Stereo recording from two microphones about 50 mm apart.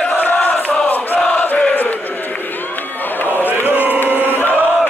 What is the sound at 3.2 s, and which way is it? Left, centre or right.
Chant, left.